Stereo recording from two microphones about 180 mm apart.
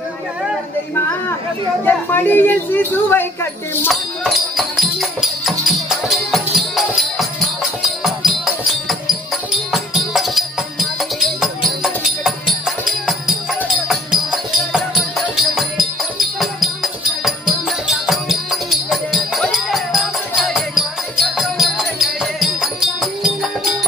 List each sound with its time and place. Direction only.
1.9 s speech: 10° left (ahead or behind)
3.9 s music: centre (ahead or behind)
14.7 s music: centre (ahead or behind)